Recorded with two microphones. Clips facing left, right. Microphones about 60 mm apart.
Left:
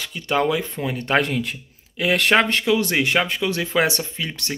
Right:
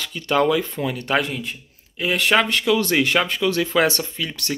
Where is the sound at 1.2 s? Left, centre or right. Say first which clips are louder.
Left 4 dB; left.